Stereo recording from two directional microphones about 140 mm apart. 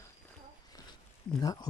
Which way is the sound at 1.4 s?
30° left (ahead or behind).